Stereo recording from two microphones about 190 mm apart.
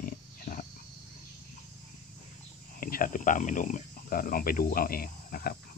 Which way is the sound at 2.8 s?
50° left (ahead or behind).